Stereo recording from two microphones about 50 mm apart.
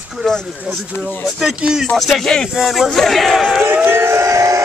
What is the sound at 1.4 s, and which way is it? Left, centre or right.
Speech, centre.